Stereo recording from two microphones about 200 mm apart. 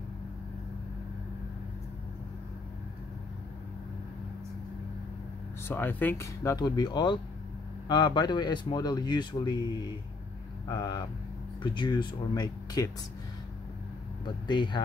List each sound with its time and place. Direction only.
5.7 s speech: 10° left (ahead or behind)
10.7 s speech: 20° left (ahead or behind)
14.2 s speech: 25° left (ahead or behind)